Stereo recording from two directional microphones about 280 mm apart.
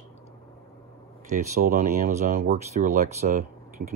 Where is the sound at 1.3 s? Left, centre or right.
Right.